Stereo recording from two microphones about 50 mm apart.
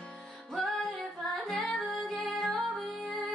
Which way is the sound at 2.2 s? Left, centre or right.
Centre.